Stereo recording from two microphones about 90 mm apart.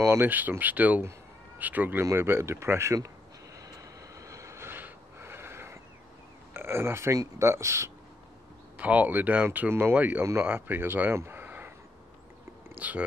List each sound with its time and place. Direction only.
0.0 s speech: 30° right (ahead or behind)
0.3 s speech: 20° right (ahead or behind)
3.5 s vehicle: 35° right (ahead or behind)
6.5 s speech: 25° right (ahead or behind)
8.7 s speech: 15° right (ahead or behind)
12.7 s stomach rumble: 15° right (ahead or behind)